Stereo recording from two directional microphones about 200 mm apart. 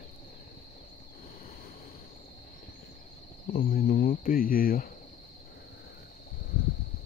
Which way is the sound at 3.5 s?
45° left (ahead or behind).